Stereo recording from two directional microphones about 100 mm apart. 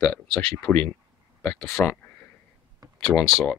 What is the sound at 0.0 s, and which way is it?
Speech, 10° left (ahead or behind).